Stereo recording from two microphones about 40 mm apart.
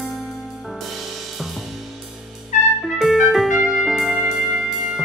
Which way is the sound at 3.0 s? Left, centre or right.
Centre.